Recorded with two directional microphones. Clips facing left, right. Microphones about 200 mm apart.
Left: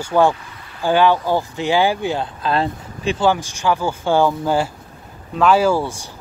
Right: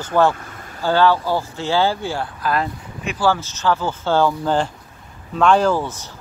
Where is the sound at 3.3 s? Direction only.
15° left (ahead or behind).